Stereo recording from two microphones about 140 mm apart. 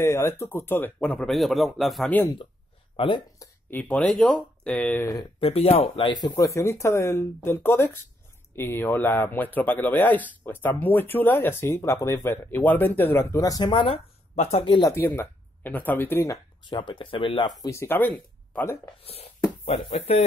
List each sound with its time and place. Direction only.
0.0 s speech: 15° left (ahead or behind); by 2.1 s centre (ahead or behind)
3.0 s speech: 40° left (ahead or behind)
3.3 s speech: 10° left (ahead or behind)
5.2 s speech: 45° left (ahead or behind)
6.2 s speech: 25° left (ahead or behind); by 14.8 s 45° left (ahead or behind)
14.8 s speech: 20° left (ahead or behind)
16.7 s speech: 35° left (ahead or behind)
17.6 s speech: 15° left (ahead or behind)
19.6 s speech: 50° left (ahead or behind)